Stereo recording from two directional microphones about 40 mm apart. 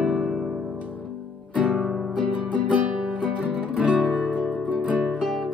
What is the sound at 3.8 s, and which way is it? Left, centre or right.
Music, right.